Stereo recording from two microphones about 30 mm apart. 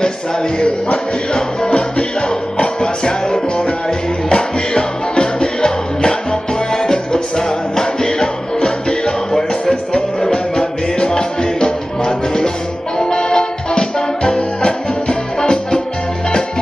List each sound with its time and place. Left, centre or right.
0.0 s speech: left
1.7 s music: left
9.3 s music: centre